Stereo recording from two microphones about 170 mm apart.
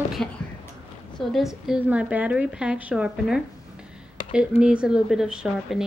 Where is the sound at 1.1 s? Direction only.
Centre (ahead or behind).